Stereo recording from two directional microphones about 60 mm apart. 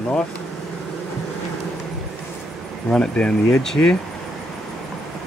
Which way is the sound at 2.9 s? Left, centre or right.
Centre.